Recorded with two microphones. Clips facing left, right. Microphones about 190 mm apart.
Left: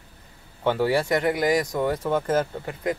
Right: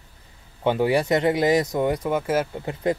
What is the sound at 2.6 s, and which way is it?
Speech, 25° right (ahead or behind).